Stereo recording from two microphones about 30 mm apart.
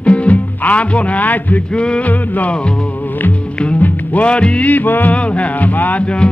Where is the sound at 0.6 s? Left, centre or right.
Left.